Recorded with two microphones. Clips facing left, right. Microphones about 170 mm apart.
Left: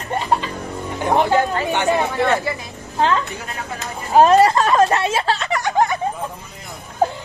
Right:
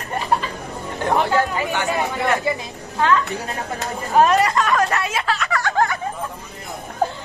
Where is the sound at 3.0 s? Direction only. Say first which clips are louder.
Even; 30° left (ahead or behind).